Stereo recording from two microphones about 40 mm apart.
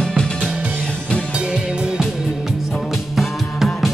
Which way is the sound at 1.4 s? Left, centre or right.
Right.